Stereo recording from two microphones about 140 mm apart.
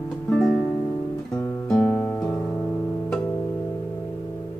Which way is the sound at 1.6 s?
10° left (ahead or behind).